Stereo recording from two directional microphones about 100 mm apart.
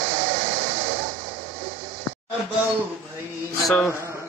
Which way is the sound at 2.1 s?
25° left (ahead or behind).